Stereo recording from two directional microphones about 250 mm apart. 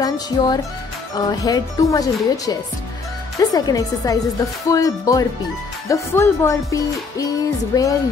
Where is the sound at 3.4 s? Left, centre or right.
Centre.